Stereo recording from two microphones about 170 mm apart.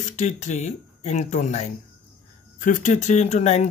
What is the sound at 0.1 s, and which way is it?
Speech, 45° left (ahead or behind).